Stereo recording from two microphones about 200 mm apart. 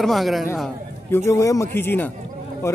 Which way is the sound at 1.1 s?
15° left (ahead or behind).